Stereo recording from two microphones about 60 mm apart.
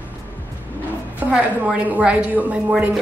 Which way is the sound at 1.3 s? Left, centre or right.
Centre.